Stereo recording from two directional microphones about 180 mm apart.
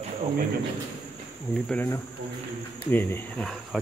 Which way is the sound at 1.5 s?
10° left (ahead or behind).